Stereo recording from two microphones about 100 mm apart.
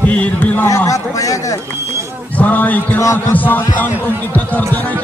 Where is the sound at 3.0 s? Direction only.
30° left (ahead or behind).